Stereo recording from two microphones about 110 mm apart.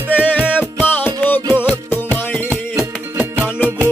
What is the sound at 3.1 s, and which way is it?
Music, 15° right (ahead or behind).